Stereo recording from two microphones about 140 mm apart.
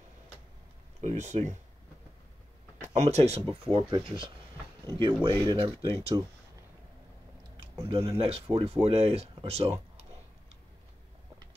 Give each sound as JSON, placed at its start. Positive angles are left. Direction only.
{"t": 1.0, "sound": "speech", "side_deg": -55}
{"t": 2.8, "sound": "speech", "side_deg": -55}
{"t": 7.9, "sound": "speech", "side_deg": -45}